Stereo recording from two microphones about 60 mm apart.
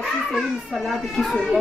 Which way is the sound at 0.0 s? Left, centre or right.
Centre.